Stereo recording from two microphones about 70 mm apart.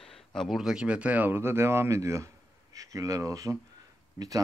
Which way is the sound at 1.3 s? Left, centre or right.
Right.